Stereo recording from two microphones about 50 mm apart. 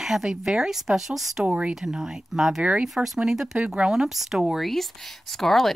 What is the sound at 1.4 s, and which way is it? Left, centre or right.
Speech, right.